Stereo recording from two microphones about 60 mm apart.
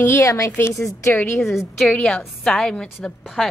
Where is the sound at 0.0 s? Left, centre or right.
Left.